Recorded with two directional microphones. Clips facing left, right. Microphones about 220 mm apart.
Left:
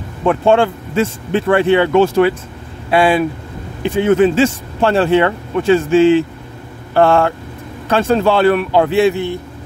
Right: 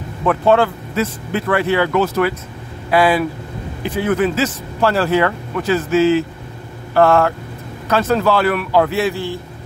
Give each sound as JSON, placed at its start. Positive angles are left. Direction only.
{"t": 0.2, "sound": "speech", "side_deg": 25}